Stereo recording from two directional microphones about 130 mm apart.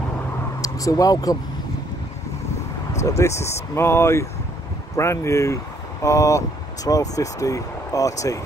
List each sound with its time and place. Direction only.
0.6 s speech: 25° left (ahead or behind)
3.2 s speech: 20° left (ahead or behind)